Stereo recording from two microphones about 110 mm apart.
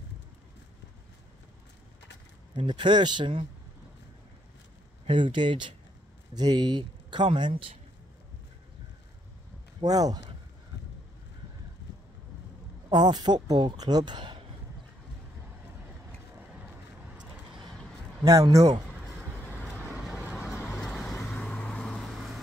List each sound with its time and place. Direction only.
2.5 s speech: 45° right (ahead or behind)
5.0 s speech: 50° right (ahead or behind)
9.8 s speech: 35° right (ahead or behind)
12.9 s speech: 40° right (ahead or behind)
18.2 s speech: 30° right (ahead or behind)
19.8 s vehicle: 10° right (ahead or behind)
20.8 s vehicle: centre (ahead or behind)
21.3 s vehicle: 10° left (ahead or behind)